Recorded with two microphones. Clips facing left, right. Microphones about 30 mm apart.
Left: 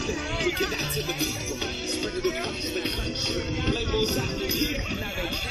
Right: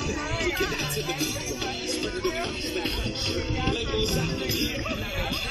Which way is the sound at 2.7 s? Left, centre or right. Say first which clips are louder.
Even; centre.